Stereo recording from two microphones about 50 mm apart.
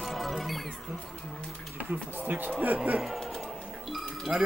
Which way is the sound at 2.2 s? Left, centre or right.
Right.